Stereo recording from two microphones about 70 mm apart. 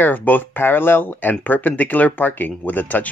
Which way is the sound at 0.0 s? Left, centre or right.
Left.